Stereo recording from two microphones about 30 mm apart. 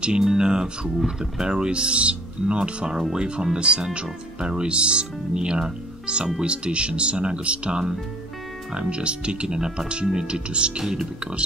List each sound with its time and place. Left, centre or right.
0.4 s speech: right
2.9 s speech: centre
3.2 s speech: right
10.8 s speech: centre